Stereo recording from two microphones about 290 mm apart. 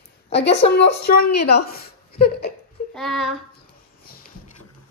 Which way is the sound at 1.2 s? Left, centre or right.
Left.